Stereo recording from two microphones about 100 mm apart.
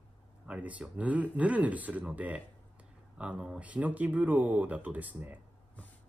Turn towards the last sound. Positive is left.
turn(degrees=-15)  # may be behind; listen again after turning